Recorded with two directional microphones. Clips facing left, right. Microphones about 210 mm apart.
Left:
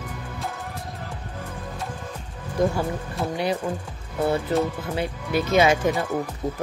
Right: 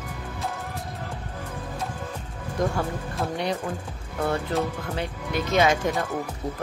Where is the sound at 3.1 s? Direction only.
5° left (ahead or behind).